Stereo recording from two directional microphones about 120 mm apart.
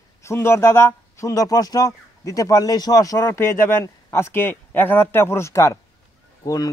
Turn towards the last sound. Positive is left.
turn(degrees=35)  # may be behind; listen again after turning